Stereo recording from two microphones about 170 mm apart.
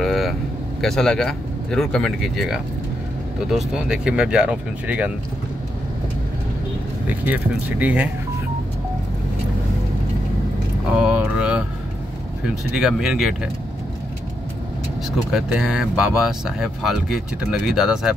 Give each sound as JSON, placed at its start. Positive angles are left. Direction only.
{"t": 0.0, "sound": "speech", "side_deg": 0}
{"t": 7.1, "sound": "speech", "side_deg": -10}
{"t": 11.0, "sound": "vehicle", "side_deg": -5}
{"t": 12.7, "sound": "speech", "side_deg": -5}
{"t": 15.1, "sound": "speech", "side_deg": -5}